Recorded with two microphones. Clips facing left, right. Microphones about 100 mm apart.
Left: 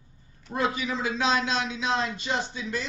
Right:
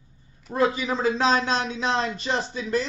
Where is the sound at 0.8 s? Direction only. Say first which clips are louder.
Right 5 dB; 35° right (ahead or behind).